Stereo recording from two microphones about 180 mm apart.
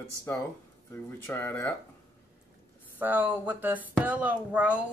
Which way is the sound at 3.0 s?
10° right (ahead or behind).